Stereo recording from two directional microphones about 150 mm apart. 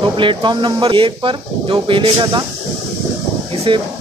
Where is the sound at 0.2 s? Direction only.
35° right (ahead or behind).